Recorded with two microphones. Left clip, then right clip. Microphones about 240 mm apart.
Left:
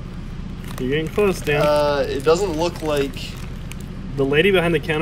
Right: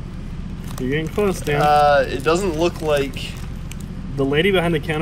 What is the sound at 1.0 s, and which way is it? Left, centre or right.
Speech, centre.